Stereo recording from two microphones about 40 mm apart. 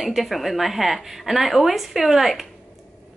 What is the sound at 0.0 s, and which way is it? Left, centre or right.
A woman's voice, centre.